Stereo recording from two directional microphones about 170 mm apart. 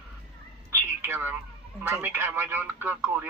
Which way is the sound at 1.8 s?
15° right (ahead or behind).